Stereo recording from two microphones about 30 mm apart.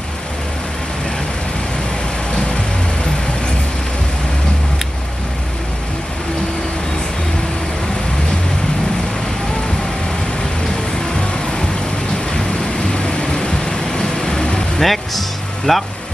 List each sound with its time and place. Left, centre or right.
12.9 s vehicle: left
14.8 s music: centre